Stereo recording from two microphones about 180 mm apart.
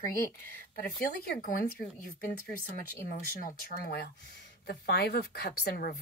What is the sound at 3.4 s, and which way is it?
Speech, 50° left (ahead or behind).